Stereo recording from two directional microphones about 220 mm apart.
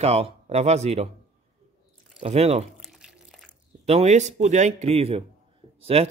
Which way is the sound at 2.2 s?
30° right (ahead or behind).